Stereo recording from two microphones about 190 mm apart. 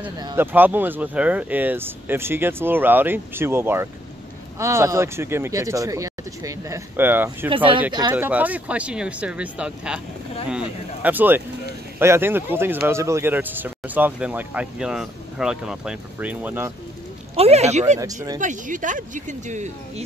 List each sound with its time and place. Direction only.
0.2 s speech: 20° right (ahead or behind)
0.5 s speech: 10° right (ahead or behind)
7.4 s speech: 25° right (ahead or behind)
8.1 s speech: 10° right (ahead or behind)
17.4 s speech: 35° right (ahead or behind)
17.9 s speech: 20° right (ahead or behind)
18.4 s speech: 40° right (ahead or behind)